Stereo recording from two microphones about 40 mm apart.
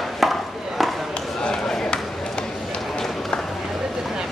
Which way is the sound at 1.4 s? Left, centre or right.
Centre.